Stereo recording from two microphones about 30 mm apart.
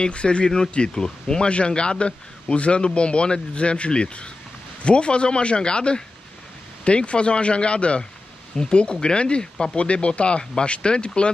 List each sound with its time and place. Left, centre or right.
0.0 s speech: left
0.8 s speech: left
1.4 s speech: left